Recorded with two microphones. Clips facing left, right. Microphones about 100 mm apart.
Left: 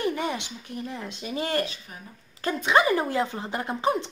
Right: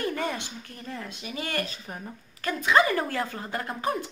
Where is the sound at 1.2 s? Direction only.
30° left (ahead or behind).